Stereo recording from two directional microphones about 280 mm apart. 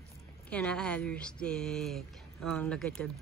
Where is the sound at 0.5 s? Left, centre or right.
Centre.